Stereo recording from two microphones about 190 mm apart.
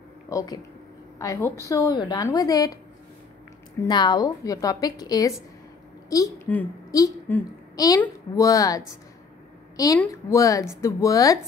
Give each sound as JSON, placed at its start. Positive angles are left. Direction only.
{"t": 0.3, "sound": "a woman's voice", "side_deg": 20}
{"t": 3.8, "sound": "a woman's voice", "side_deg": 20}
{"t": 9.9, "sound": "speech", "side_deg": 15}